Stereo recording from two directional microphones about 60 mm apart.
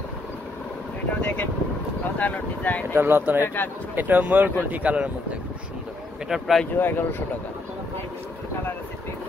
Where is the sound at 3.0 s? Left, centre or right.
Right.